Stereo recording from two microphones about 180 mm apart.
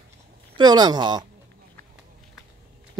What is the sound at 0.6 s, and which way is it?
Speech, 25° right (ahead or behind).